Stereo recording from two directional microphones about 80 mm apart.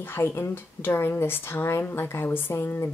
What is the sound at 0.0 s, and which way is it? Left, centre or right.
Speech, left.